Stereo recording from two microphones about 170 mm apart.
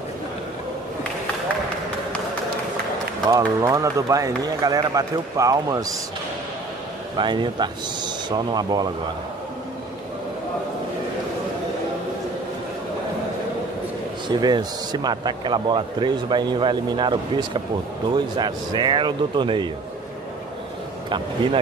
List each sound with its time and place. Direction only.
3.3 s speech: 20° right (ahead or behind)
7.2 s speech: 25° right (ahead or behind)
14.3 s speech: 25° right (ahead or behind)